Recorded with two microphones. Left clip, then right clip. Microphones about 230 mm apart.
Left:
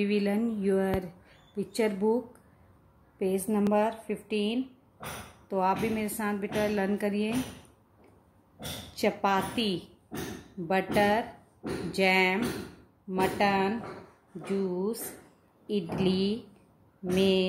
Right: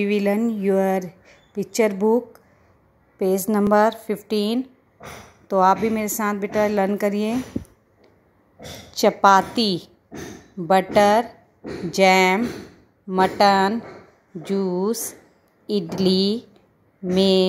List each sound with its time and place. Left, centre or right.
0.0 s a woman's voice: right
3.2 s a woman's voice: right
8.9 s a woman's voice: right